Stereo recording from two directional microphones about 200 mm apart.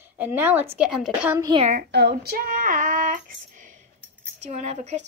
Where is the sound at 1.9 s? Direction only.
55° right (ahead or behind).